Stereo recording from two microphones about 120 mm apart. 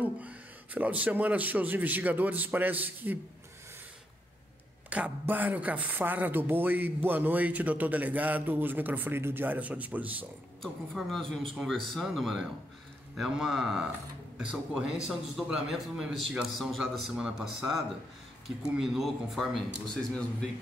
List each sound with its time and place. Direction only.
0.0 s speech: 15° right (ahead or behind)
4.8 s speech: 10° right (ahead or behind)
10.6 s a man's voice: centre (ahead or behind)